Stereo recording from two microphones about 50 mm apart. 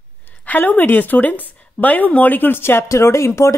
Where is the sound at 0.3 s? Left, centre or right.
Left.